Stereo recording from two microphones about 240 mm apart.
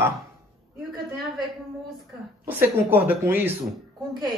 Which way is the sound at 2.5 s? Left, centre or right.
Centre.